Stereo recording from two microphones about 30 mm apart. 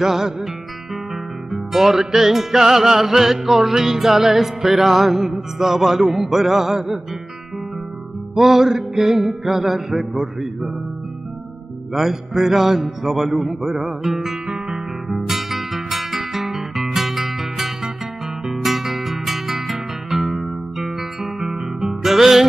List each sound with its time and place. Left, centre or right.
0.0 s music: centre
1.5 s music: centre
8.4 s music: centre
11.9 s music: centre
14.1 s music: centre
21.4 s guitar: right
22.0 s music: centre